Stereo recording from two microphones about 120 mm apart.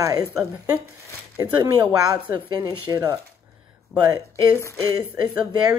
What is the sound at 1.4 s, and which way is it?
Speech, 30° right (ahead or behind).